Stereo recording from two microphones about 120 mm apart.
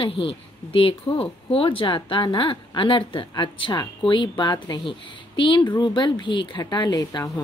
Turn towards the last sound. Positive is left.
turn(degrees=30)  # may be behind; listen again after turning